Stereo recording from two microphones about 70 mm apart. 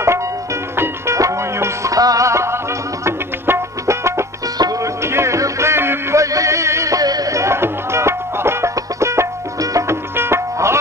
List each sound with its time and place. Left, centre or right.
0.7 s music: right
6.2 s music: right